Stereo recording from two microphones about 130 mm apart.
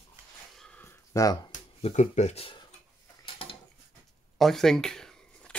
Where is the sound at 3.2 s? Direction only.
45° left (ahead or behind).